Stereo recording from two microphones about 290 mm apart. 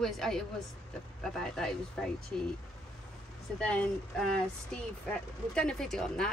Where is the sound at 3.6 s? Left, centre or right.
Centre.